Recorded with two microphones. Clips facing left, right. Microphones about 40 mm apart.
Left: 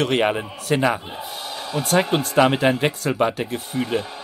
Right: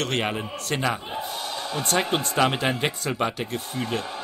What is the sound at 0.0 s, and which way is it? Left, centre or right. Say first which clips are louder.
Speech: left 6 dB; centre.